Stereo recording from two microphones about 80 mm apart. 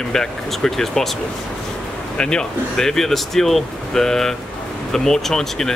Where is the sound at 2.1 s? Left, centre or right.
Centre.